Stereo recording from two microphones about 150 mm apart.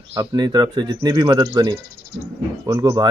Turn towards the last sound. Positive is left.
turn(degrees=-25)  # may be behind; listen again after turning